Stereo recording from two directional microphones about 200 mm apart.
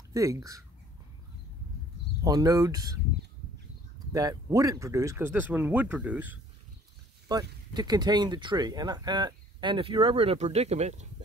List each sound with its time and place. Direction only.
0.1 s speech: 15° right (ahead or behind)
2.2 s speech: 20° right (ahead or behind)
4.1 s speech: 20° right (ahead or behind)
7.2 s speech: 20° right (ahead or behind)